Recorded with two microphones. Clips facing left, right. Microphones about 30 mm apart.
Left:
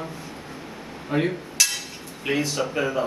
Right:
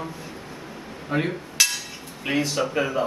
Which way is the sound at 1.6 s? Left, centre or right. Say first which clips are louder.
Right 1 dB; centre.